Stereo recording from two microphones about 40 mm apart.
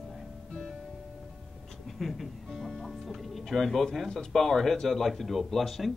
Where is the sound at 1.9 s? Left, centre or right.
Centre.